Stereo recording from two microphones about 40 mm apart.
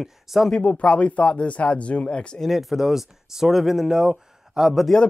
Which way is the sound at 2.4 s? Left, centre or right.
Centre.